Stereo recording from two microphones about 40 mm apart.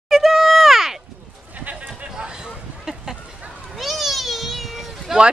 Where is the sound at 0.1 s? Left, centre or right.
Centre.